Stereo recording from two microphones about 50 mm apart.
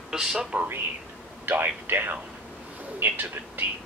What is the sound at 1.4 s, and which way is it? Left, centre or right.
Speech, right.